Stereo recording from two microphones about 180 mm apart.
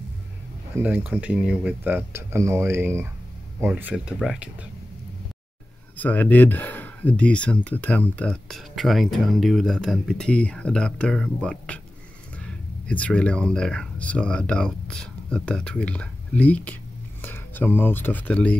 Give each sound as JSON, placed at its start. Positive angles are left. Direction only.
{"t": 0.8, "sound": "speech", "side_deg": -10}
{"t": 5.9, "sound": "speech", "side_deg": 10}